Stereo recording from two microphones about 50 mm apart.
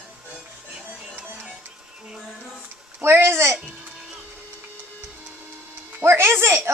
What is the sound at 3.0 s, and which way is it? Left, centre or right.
Speech, right.